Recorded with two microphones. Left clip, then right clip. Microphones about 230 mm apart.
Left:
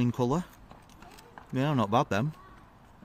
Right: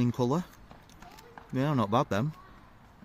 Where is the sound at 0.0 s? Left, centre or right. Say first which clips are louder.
Even; centre.